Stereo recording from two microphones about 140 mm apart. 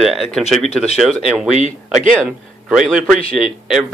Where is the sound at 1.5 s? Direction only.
60° right (ahead or behind).